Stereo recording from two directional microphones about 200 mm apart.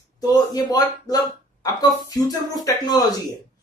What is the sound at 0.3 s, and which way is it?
A man's voice, 20° left (ahead or behind).